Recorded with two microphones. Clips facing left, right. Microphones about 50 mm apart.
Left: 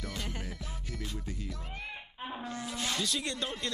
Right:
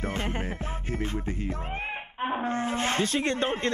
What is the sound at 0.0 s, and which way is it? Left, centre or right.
Music, right.